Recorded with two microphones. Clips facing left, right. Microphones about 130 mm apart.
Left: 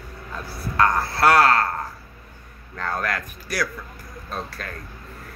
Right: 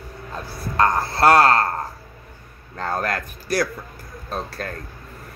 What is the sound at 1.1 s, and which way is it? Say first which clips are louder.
Speech: right 3 dB; 30° right (ahead or behind).